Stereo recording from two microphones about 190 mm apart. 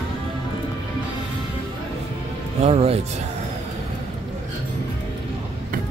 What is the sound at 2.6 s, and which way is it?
Speech, 35° right (ahead or behind).